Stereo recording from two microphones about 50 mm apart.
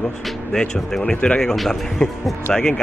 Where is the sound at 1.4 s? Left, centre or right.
Centre.